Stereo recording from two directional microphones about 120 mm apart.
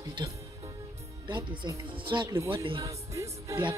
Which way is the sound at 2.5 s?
45° right (ahead or behind).